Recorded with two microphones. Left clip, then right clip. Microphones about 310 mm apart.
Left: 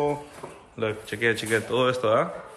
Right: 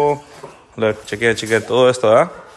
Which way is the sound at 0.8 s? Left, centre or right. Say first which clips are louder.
Right 9 dB; centre.